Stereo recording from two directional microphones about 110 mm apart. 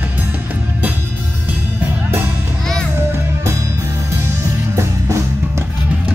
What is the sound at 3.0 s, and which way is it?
Music, 25° right (ahead or behind).